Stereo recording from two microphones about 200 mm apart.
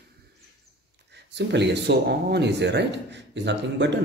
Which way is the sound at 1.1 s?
60° right (ahead or behind).